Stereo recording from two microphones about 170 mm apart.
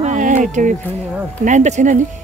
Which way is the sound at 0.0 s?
45° right (ahead or behind).